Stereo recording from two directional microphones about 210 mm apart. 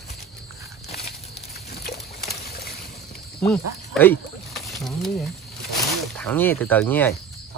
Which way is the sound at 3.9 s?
Centre (ahead or behind).